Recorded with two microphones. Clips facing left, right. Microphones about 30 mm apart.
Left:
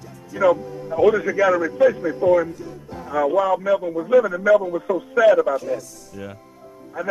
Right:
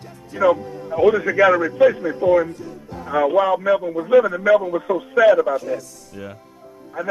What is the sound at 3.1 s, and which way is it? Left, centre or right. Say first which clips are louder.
Speech: right 2 dB; right.